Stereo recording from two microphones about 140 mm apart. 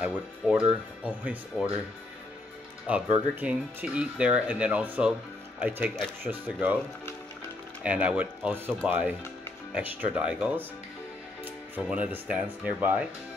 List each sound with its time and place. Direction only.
0.0 s speech: 10° right (ahead or behind)
2.9 s speech: 10° right (ahead or behind)
7.8 s speech: 10° right (ahead or behind)
11.7 s speech: 10° right (ahead or behind)